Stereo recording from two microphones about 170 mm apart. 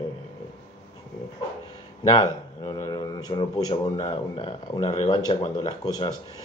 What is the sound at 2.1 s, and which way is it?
Speech, 25° left (ahead or behind).